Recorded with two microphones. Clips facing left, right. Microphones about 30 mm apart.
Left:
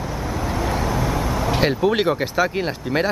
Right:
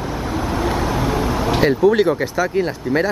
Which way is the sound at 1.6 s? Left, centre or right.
Centre.